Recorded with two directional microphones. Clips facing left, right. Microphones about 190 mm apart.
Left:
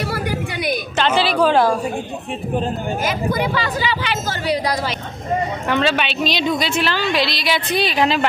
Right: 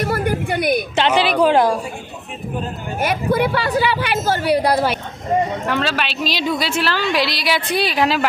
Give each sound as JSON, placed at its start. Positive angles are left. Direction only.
{"t": 0.0, "sound": "a sound", "side_deg": -50}
{"t": 0.9, "sound": "a woman's voice", "side_deg": -15}
{"t": 3.0, "sound": "a woman's voice", "side_deg": -60}
{"t": 5.7, "sound": "a woman's voice", "side_deg": 0}